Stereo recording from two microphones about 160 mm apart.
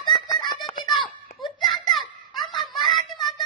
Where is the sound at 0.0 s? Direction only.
30° left (ahead or behind).